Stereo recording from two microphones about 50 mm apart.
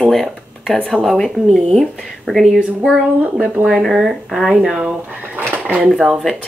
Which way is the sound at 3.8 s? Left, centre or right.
Centre.